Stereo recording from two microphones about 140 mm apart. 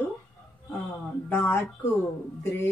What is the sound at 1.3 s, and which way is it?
Speech, 15° left (ahead or behind).